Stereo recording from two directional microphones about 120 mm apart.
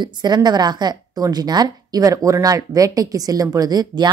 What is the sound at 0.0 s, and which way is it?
A woman's voice, 35° right (ahead or behind).